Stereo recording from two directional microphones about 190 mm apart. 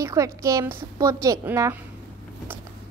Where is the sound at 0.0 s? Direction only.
15° right (ahead or behind).